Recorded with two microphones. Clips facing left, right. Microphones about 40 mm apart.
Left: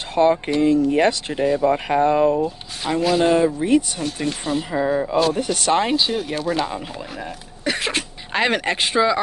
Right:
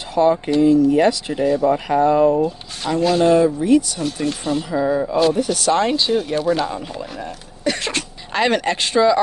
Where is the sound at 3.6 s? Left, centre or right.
Left.